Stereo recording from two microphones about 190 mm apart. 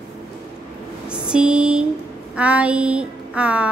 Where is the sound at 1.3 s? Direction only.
5° right (ahead or behind).